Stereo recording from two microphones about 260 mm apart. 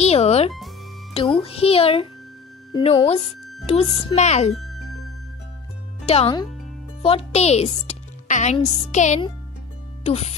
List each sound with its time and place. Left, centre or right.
0.0 s music: left
1.4 s speech: left
4.6 s music: centre
6.0 s speech: left